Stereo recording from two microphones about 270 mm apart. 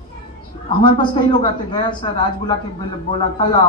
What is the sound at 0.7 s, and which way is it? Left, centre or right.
A man's voice, centre.